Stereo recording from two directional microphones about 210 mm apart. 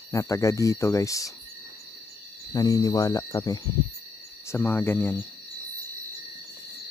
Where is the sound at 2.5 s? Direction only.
20° left (ahead or behind).